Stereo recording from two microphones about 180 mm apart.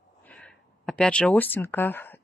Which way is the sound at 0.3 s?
5° left (ahead or behind).